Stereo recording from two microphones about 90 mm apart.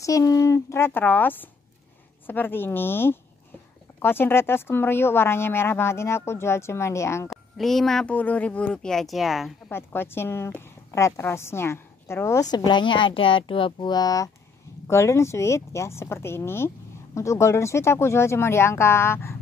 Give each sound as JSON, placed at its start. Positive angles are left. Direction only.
{"t": 0.0, "sound": "speech", "side_deg": 40}
{"t": 7.2, "sound": "speech", "side_deg": 5}
{"t": 8.1, "sound": "speech", "side_deg": 15}
{"t": 9.7, "sound": "a woman's voice", "side_deg": 25}
{"t": 12.4, "sound": "speech", "side_deg": 50}
{"t": 14.9, "sound": "speech", "side_deg": 30}